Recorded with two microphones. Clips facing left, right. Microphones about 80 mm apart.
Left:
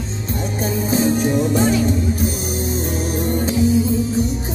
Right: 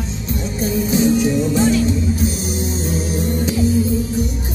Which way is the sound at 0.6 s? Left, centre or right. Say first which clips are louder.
Right 2 dB; left.